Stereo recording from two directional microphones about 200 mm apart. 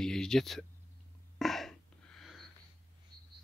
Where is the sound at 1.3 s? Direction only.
Centre (ahead or behind).